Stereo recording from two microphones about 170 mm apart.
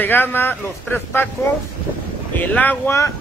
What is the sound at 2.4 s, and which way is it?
Speech, 10° left (ahead or behind).